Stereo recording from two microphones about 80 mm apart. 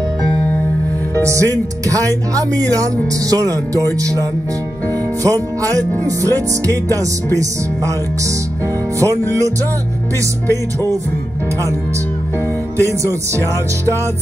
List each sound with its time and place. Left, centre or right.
1.2 s speech: right
5.2 s speech: right
9.0 s music: right